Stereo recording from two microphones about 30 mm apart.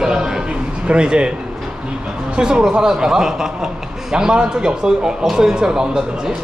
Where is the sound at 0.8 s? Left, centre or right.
Right.